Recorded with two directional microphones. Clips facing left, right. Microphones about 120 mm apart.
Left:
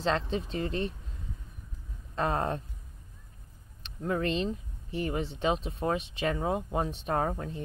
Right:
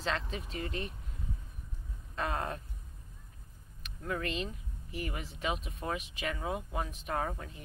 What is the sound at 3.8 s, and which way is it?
Speech, 30° left (ahead or behind).